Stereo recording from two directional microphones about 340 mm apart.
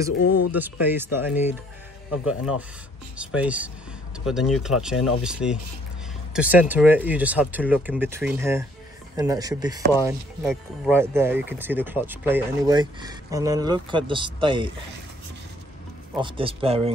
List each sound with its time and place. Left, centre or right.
0.2 s speech: left
0.6 s speech: centre
16.2 s speech: centre